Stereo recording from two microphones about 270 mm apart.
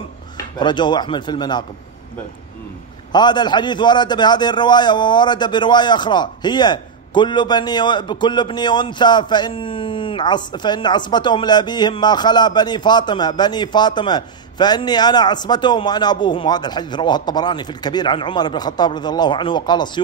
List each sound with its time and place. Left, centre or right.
0.6 s a man's voice: centre
3.1 s a man's voice: centre